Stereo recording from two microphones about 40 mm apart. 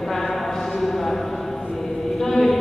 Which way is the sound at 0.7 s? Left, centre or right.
Centre.